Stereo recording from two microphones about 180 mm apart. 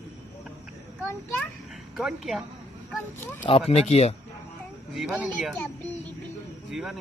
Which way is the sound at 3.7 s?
35° left (ahead or behind).